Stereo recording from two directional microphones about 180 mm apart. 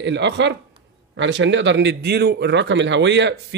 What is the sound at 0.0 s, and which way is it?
Speech, 70° right (ahead or behind).